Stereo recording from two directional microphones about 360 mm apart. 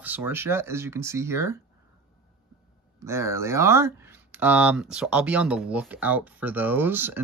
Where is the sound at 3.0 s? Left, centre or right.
Centre.